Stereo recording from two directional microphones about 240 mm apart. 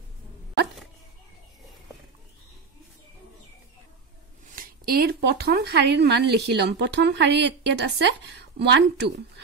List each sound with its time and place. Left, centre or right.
4.6 s speech: right